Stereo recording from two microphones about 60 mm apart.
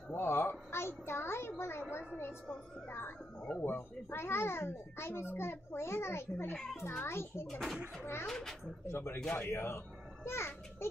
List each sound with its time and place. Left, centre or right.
0.1 s a child's voice: left
8.3 s a child's voice: centre
8.8 s a child's voice: left